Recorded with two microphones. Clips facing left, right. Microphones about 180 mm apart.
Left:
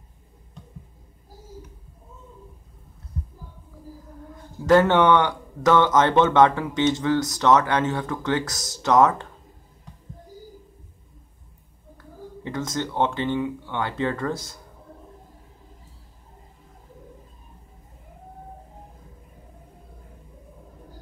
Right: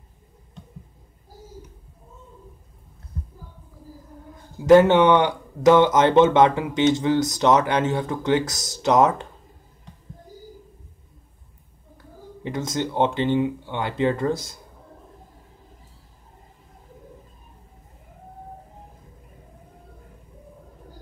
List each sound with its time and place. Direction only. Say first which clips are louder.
4.6 s speech: right 3 dB; 15° right (ahead or behind)
12.4 s speech: right 2 dB; 15° right (ahead or behind)